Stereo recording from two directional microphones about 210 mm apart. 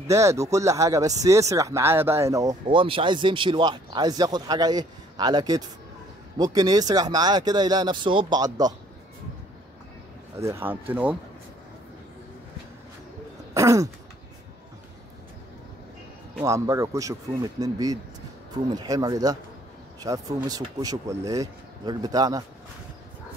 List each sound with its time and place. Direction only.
0.1 s speech: 15° right (ahead or behind)
10.3 s speech: 10° right (ahead or behind)
13.5 s throat clearing: 15° right (ahead or behind)
16.4 s speech: 15° right (ahead or behind)